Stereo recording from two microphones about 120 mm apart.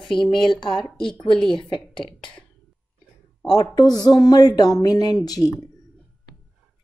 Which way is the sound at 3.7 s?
35° left (ahead or behind).